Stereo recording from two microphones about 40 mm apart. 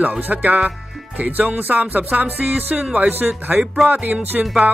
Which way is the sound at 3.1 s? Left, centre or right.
Right.